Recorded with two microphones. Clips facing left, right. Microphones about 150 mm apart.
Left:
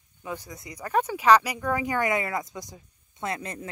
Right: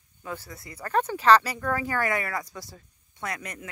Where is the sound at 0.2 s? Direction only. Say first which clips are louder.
Left 1 dB; 15° left (ahead or behind).